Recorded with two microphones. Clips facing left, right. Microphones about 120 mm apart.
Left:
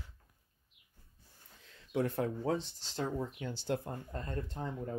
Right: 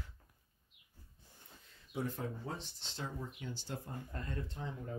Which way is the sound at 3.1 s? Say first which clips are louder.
Left 7 dB; 80° left.